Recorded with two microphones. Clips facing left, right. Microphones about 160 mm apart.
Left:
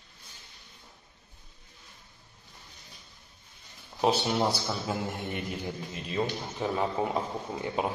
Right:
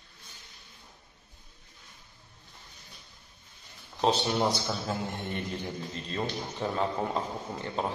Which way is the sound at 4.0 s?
10° left (ahead or behind).